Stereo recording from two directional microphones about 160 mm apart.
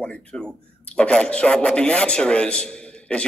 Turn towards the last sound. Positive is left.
turn(degrees=5)  # may be behind; listen again after turning